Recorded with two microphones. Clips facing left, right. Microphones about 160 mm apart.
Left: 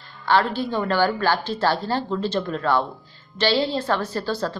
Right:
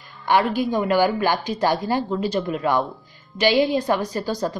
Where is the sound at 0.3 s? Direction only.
15° right (ahead or behind).